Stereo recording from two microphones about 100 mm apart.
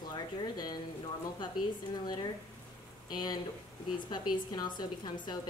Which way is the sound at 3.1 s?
45° left (ahead or behind).